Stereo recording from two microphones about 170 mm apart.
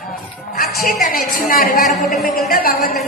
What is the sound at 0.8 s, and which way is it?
Speech, 60° left (ahead or behind).